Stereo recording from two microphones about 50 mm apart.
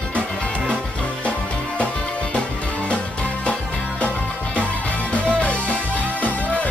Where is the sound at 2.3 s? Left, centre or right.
Left.